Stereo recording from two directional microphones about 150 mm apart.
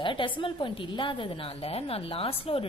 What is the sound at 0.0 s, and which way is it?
Speech, 35° left (ahead or behind).